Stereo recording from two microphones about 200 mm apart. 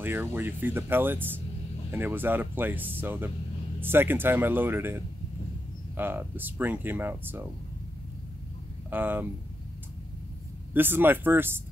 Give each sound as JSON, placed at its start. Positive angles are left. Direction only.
{"t": 0.0, "sound": "speech", "side_deg": -10}
{"t": 8.9, "sound": "speech", "side_deg": -10}
{"t": 10.7, "sound": "speech", "side_deg": -10}